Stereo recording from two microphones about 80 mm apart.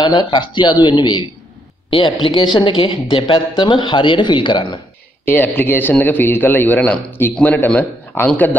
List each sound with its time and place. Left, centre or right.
0.0 s speech: left
1.9 s a woman's voice: left
5.2 s a man's voice: left